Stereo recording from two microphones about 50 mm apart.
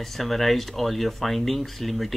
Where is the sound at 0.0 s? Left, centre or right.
Centre.